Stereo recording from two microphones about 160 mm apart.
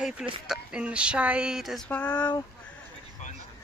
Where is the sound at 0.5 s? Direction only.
5° right (ahead or behind).